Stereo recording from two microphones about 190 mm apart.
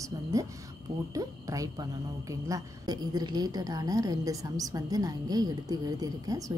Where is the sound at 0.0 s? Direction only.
15° right (ahead or behind).